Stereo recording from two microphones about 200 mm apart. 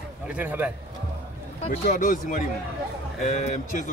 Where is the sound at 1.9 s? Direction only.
45° left (ahead or behind).